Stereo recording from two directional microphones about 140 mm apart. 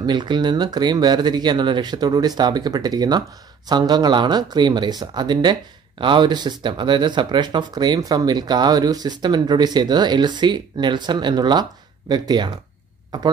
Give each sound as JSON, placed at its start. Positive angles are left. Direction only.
{"t": 0.0, "sound": "speech", "side_deg": -30}